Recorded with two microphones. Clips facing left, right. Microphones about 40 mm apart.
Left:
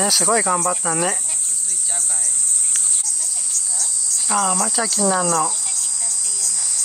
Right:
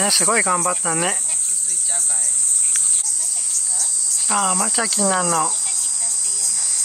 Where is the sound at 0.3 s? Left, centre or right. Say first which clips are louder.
Even; right.